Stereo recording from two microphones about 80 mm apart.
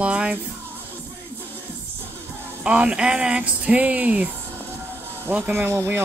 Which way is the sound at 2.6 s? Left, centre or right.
Centre.